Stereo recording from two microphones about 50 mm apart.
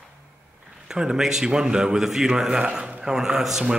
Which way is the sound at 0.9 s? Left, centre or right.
Centre.